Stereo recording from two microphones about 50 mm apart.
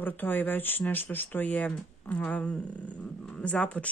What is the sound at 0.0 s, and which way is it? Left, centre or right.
Speech, left.